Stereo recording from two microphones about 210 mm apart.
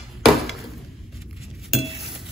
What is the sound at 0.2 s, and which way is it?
Hammer, centre (ahead or behind).